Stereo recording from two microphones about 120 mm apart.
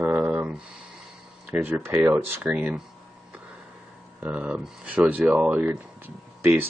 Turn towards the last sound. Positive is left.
turn(degrees=-20)  # may be behind; listen again after turning